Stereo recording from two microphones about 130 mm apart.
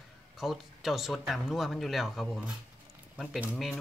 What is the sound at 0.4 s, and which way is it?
Speech, centre (ahead or behind).